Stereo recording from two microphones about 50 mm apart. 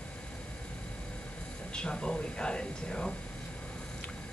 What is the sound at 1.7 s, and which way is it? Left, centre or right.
Speech, centre.